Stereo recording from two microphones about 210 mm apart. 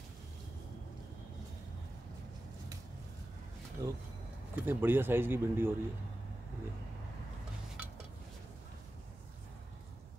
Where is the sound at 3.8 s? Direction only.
15° right (ahead or behind).